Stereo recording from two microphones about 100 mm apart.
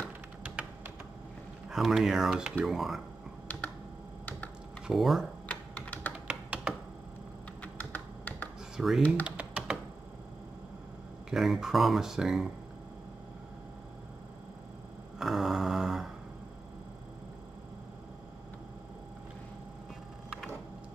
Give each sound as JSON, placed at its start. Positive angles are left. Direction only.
{"t": 0.4, "sound": "a sound", "side_deg": -10}
{"t": 1.7, "sound": "speech", "side_deg": -5}
{"t": 4.8, "sound": "speech", "side_deg": 0}
{"t": 5.5, "sound": "typing", "side_deg": 15}
{"t": 6.1, "sound": "tap", "side_deg": -10}
{"t": 7.6, "sound": "computer keyboard", "side_deg": 15}
{"t": 8.7, "sound": "speech", "side_deg": -5}
{"t": 9.2, "sound": "typing", "side_deg": -10}
{"t": 11.2, "sound": "speech", "side_deg": 0}
{"t": 15.1, "sound": "a sound", "side_deg": 0}